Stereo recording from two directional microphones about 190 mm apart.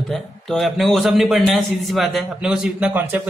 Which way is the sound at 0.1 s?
Centre (ahead or behind).